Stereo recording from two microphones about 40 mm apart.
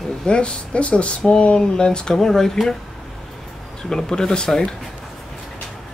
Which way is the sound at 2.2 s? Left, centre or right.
Centre.